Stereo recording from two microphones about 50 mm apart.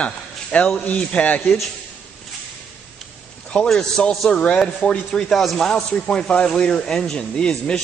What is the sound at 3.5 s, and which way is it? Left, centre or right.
Speech, centre.